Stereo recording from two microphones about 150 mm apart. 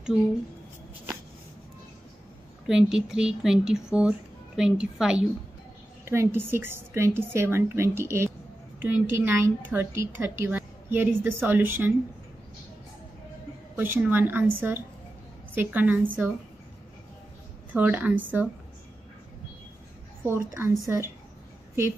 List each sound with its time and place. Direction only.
2.6 s speech: 5° right (ahead or behind)
6.0 s a woman's voice: 15° right (ahead or behind)
13.7 s a woman's voice: 15° right (ahead or behind)
17.7 s a woman's voice: 10° right (ahead or behind)
20.2 s a woman's voice: 15° right (ahead or behind)